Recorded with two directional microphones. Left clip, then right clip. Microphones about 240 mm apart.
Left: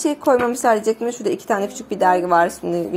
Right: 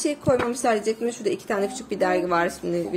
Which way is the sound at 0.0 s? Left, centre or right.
Centre.